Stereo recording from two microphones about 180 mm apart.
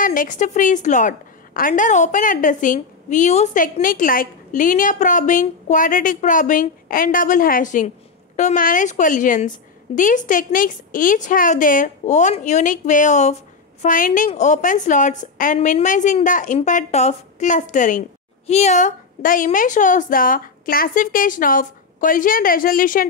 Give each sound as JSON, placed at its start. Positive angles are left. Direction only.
{"t": 0.0, "sound": "a woman's voice", "side_deg": 50}